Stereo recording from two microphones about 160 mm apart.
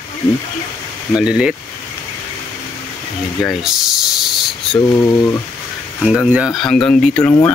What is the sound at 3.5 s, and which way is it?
Speech, 5° right (ahead or behind).